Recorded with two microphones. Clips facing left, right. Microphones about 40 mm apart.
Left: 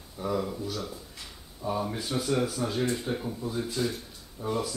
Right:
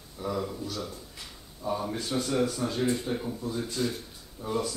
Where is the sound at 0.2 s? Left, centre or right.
Centre.